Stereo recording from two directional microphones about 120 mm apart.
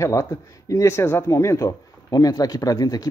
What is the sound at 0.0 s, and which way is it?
A man's voice, 25° left (ahead or behind).